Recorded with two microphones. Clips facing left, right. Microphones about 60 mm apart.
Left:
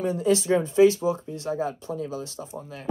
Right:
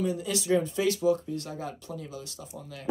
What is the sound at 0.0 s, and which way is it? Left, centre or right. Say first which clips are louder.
Speech: left 7 dB; left.